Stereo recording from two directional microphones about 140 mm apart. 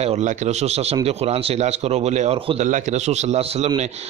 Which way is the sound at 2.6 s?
60° right (ahead or behind).